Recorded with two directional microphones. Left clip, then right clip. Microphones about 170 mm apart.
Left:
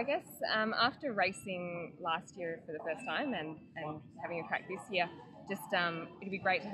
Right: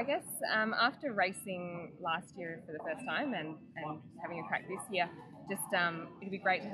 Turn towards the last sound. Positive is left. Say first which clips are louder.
# even
turn(degrees=15)  # may be behind; listen again after turning